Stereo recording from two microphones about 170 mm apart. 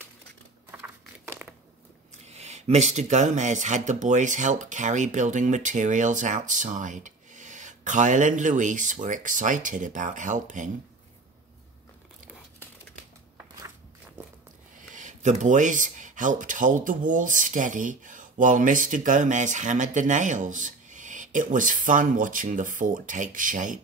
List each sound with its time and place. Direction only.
0.7 s a sound: 15° right (ahead or behind)
2.2 s speech: 40° right (ahead or behind)
15.0 s speech: 45° right (ahead or behind)